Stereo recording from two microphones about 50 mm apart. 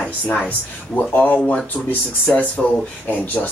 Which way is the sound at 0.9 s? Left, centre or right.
Left.